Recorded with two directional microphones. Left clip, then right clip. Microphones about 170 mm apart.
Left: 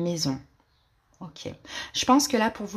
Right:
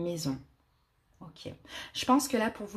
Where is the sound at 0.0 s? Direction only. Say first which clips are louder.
Left 6 dB; 20° left (ahead or behind).